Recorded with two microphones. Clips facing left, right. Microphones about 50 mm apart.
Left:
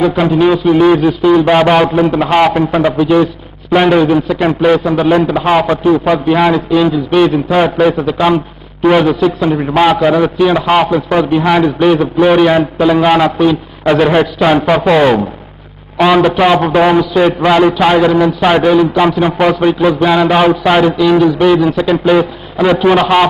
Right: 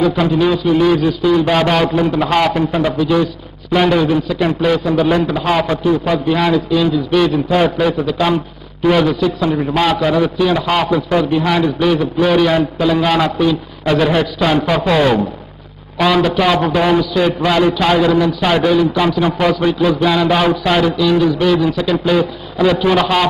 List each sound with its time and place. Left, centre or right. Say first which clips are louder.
0.2 s a man's voice: left 4 dB; left
9.5 s a man's voice: left 3 dB; centre
9.8 s a man's voice: left 6 dB; left